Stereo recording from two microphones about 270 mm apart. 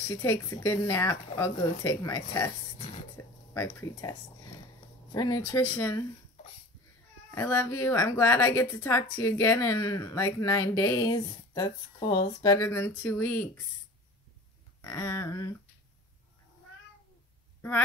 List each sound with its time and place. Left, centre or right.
0.1 s speech: centre
3.2 s a sound: centre
3.5 s speech: centre
5.1 s speech: centre
7.2 s speech: centre
14.8 s speech: centre
17.6 s a sound: centre